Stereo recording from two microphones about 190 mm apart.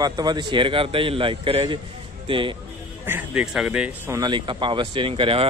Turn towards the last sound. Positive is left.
turn(degrees=-25)  # may be behind; listen again after turning